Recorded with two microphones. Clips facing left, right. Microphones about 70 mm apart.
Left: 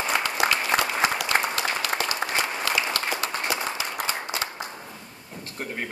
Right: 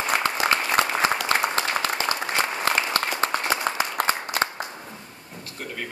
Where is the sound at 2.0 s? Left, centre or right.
Right.